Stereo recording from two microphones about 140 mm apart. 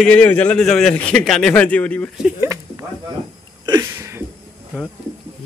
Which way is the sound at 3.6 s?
25° right (ahead or behind).